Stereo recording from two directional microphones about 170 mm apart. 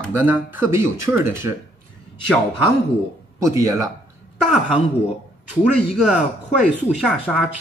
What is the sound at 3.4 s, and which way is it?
Speech, 20° right (ahead or behind).